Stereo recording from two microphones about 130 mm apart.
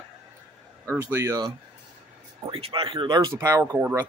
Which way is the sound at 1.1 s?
25° right (ahead or behind).